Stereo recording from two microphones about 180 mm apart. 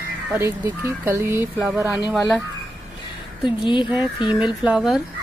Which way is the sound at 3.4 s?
25° left (ahead or behind).